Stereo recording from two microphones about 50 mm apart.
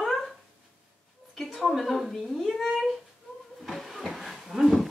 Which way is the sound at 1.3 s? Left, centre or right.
Centre.